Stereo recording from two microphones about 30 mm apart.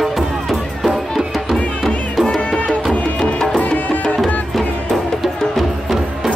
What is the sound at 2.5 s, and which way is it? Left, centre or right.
Music, left.